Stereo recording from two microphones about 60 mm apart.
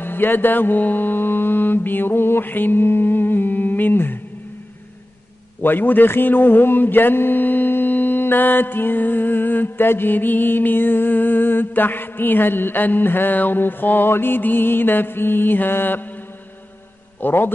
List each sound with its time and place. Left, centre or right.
0.0 s mantra: left
5.6 s mantra: left
17.2 s a man's voice: left